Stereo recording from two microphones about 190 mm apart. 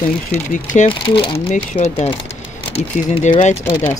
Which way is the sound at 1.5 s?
40° left (ahead or behind).